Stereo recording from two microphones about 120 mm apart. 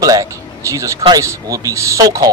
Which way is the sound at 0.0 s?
30° right (ahead or behind).